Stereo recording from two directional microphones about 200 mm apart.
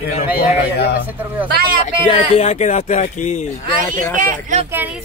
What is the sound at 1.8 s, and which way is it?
Speech, 30° left (ahead or behind).